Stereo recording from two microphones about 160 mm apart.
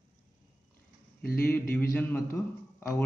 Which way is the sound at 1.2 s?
70° left (ahead or behind).